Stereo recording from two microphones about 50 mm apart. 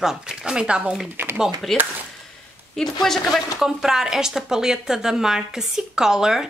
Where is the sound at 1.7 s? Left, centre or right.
Centre.